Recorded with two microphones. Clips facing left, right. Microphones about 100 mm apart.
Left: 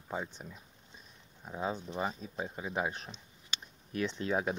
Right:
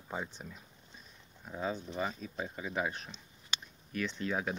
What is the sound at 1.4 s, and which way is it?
Speech, 15° left (ahead or behind).